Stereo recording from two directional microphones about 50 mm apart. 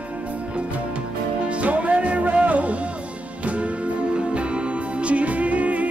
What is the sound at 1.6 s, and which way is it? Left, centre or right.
Music, right.